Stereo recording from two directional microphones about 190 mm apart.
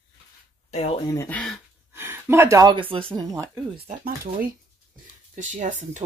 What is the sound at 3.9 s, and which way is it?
Speech, 45° right (ahead or behind).